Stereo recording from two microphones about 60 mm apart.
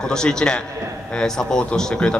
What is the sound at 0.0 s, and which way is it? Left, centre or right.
A man's voice, centre.